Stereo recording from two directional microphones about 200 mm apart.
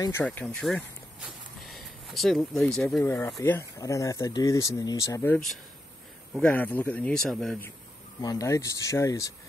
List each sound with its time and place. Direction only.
0.0 s speech: 10° left (ahead or behind)
8.2 s speech: 15° left (ahead or behind)